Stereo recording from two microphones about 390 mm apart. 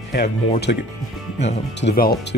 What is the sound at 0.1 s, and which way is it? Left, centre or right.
Speech, left.